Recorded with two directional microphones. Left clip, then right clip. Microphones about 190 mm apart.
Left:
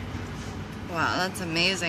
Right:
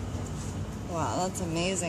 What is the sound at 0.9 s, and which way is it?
Vehicle, 35° left (ahead or behind).